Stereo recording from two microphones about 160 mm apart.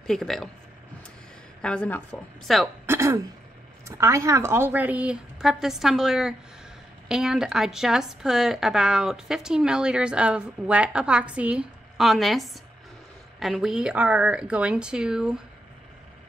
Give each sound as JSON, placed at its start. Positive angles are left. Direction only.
{"t": 0.0, "sound": "speech", "side_deg": 5}
{"t": 1.6, "sound": "speech", "side_deg": 5}
{"t": 2.9, "sound": "throat clearing", "side_deg": -15}
{"t": 3.8, "sound": "a woman's voice", "side_deg": -20}